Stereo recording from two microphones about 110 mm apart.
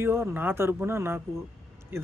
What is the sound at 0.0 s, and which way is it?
Speech, 20° right (ahead or behind).